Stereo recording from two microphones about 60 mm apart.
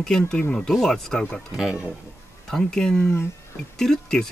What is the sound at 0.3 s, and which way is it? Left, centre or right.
Speech, centre.